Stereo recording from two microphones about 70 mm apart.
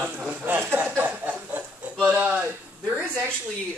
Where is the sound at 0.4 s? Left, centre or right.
Right.